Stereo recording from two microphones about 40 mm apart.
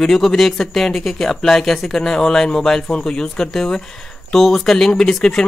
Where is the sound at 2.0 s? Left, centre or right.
Centre.